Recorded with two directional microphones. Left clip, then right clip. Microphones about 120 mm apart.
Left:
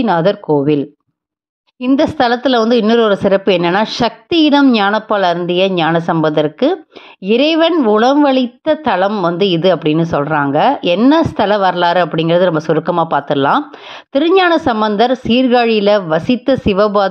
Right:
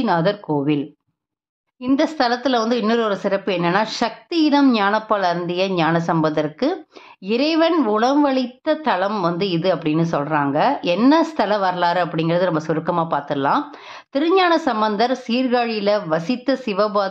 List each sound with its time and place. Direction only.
0.0 s a woman's voice: 40° left (ahead or behind)
2.0 s a woman's voice: 45° left (ahead or behind)